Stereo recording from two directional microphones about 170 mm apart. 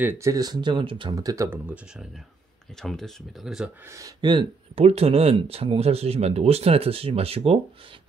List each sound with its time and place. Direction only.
0.0 s speech: 15° right (ahead or behind)
2.8 s speech: 5° left (ahead or behind)
3.9 s speech: 25° right (ahead or behind)